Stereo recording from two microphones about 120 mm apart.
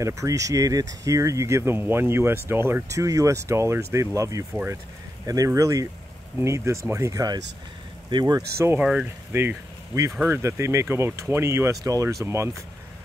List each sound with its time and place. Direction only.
0.0 s speech: 25° right (ahead or behind)
8.5 s speech: 20° right (ahead or behind)
8.8 s speech: 10° right (ahead or behind)
9.3 s speech: 20° right (ahead or behind)